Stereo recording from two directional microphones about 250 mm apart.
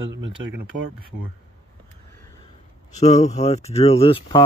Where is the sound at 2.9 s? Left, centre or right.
Left.